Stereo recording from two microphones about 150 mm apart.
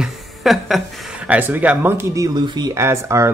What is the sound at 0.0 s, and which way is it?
Speech, centre (ahead or behind).